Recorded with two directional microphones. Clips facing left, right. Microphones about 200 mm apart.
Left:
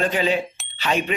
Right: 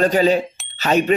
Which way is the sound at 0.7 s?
40° right (ahead or behind).